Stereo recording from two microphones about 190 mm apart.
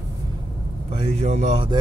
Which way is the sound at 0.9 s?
35° right (ahead or behind).